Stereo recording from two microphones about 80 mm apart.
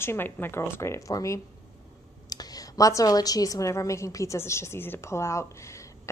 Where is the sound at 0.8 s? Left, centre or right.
Left.